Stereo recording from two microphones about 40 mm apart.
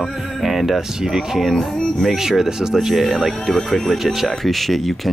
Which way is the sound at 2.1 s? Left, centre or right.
Centre.